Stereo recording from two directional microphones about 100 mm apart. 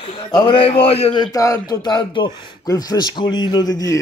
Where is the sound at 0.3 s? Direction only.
45° left (ahead or behind).